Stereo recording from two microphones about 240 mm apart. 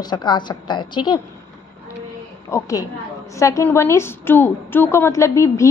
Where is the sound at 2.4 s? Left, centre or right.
Centre.